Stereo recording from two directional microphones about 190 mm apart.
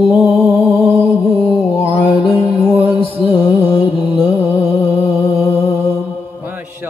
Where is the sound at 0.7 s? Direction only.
10° right (ahead or behind).